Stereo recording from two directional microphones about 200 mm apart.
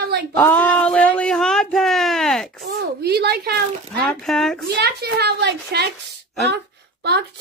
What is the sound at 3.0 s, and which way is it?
Speech, 55° right (ahead or behind).